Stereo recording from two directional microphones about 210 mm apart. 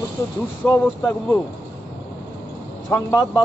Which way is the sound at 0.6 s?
10° left (ahead or behind).